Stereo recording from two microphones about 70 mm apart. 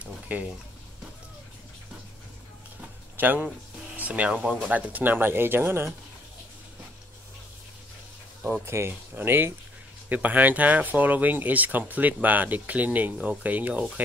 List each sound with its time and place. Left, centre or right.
0.0 s a sound: right
3.2 s speech: right
8.6 s speech: right